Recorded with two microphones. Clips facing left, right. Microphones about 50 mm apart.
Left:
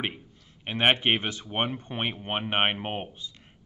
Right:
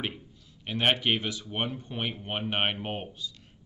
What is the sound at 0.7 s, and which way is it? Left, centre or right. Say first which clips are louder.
Speech: left 3 dB; left.